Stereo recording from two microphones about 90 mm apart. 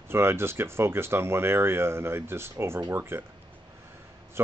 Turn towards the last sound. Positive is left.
turn(degrees=-25)  # may be behind; listen again after turning